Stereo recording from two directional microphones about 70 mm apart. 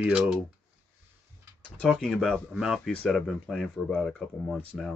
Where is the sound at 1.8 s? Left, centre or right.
Centre.